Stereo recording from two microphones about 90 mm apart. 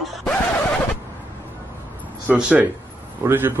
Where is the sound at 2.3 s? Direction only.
15° right (ahead or behind).